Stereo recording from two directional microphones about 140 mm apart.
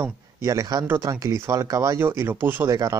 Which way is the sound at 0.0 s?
20° right (ahead or behind).